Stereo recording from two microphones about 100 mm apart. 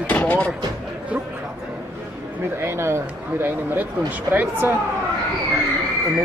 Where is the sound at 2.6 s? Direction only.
25° right (ahead or behind).